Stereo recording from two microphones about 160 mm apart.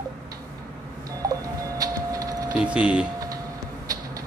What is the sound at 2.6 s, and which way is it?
Speech, 5° right (ahead or behind).